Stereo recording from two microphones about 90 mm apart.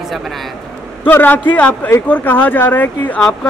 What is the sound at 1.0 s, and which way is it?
Speech, 20° left (ahead or behind).